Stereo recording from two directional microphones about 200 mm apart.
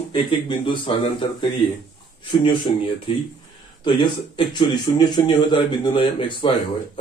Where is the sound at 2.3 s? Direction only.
25° left (ahead or behind).